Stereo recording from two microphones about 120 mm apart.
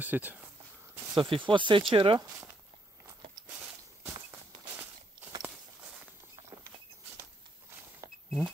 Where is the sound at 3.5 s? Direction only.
15° right (ahead or behind).